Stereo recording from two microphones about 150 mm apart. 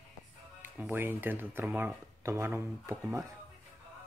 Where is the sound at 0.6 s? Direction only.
10° right (ahead or behind).